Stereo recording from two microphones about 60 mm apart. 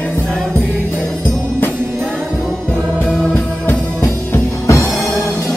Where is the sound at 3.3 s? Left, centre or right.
Left.